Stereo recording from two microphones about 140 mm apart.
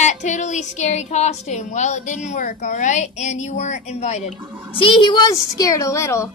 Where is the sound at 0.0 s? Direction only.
60° left (ahead or behind).